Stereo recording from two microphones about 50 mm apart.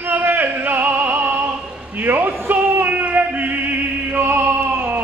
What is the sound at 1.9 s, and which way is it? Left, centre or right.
Male singing, right.